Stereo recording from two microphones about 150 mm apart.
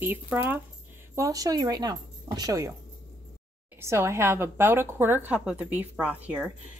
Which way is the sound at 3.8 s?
20° right (ahead or behind).